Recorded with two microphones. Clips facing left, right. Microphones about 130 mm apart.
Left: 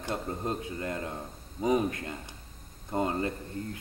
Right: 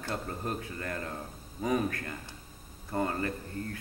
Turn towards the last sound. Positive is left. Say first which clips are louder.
# left 1 dB
turn(degrees=20)  # may be behind; listen again after turning